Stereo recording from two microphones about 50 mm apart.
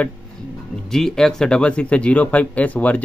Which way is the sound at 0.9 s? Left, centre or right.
Centre.